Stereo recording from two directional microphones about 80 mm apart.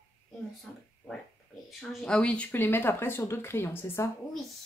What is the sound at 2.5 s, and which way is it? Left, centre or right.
Speech, left.